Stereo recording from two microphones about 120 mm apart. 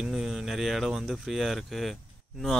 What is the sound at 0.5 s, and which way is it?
Speech, centre (ahead or behind).